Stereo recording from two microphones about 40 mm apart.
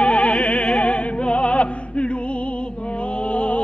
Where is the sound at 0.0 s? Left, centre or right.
Left.